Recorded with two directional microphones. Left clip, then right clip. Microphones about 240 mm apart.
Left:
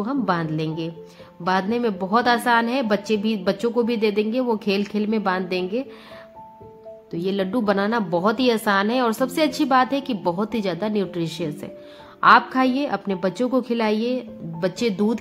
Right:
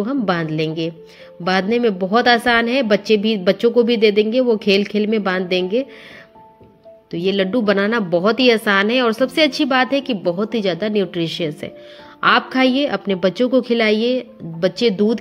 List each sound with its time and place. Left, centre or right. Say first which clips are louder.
0.0 s a woman's voice: right 3 dB; centre
7.1 s a woman's voice: right 6 dB; centre